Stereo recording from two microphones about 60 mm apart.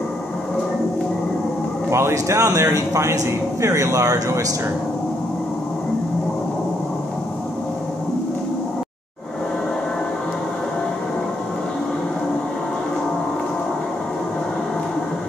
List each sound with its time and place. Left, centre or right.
1.9 s speech: right